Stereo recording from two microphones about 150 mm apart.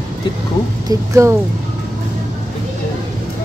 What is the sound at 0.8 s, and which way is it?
Speech, 20° right (ahead or behind).